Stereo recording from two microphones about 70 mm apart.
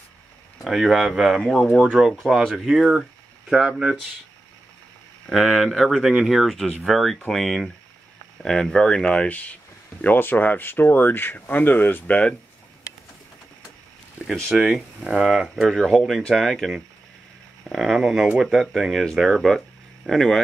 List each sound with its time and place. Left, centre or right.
0.7 s speech: centre
1.8 s speech: centre
5.3 s speech: centre
10.0 s speech: left
14.5 s speech: centre